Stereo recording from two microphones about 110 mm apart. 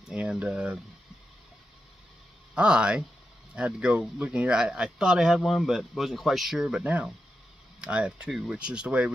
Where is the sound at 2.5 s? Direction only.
10° right (ahead or behind).